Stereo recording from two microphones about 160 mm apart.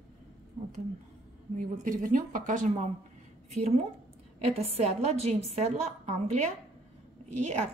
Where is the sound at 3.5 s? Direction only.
40° right (ahead or behind).